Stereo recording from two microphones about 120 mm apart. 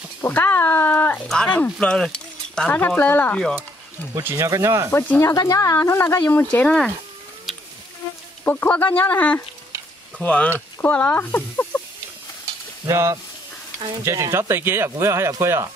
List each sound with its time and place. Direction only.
0.2 s speech: 15° left (ahead or behind)
4.1 s speech: 20° right (ahead or behind)
4.9 s speech: 15° left (ahead or behind)
5.3 s speech: 30° left (ahead or behind); by 6.9 s 10° left (ahead or behind)
8.5 s speech: 15° left (ahead or behind)
12.8 s speech: 25° right (ahead or behind)